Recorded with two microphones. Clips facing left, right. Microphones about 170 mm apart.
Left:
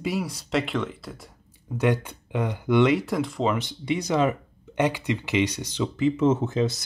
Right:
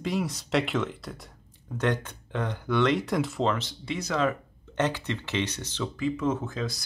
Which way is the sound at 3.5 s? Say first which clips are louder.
Left 4 dB; 15° left (ahead or behind).